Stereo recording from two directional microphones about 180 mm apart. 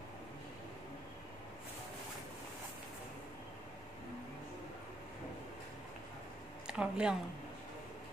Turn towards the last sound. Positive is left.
turn(degrees=-5)  # may be behind; listen again after turning